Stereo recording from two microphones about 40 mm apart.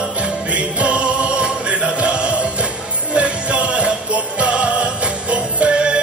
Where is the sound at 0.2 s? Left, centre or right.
Right.